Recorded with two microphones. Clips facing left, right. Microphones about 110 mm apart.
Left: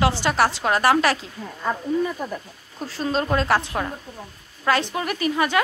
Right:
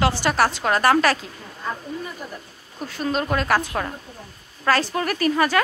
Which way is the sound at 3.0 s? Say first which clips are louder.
Left 1 dB; 25° left (ahead or behind).